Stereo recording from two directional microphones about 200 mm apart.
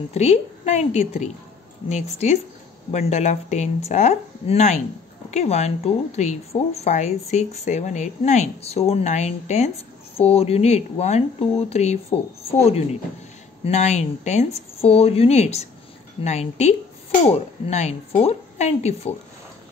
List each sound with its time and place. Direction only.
0.1 s speech: 35° left (ahead or behind)